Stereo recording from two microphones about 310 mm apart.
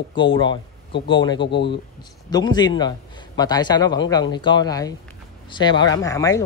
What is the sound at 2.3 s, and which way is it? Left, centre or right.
Speech, centre.